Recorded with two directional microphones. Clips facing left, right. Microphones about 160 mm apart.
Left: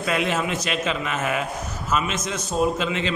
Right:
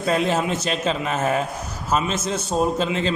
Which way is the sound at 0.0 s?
35° right (ahead or behind).